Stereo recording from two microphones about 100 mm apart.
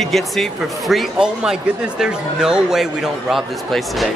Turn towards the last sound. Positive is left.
turn(degrees=0)  # may be behind; listen again after turning